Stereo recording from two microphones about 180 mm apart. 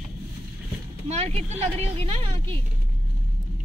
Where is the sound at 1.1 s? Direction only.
35° right (ahead or behind).